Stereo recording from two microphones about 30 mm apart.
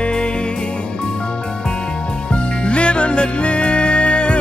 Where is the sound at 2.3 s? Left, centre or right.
Left.